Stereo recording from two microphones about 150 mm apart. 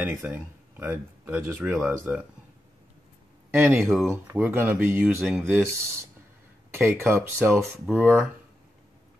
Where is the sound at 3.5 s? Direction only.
15° right (ahead or behind).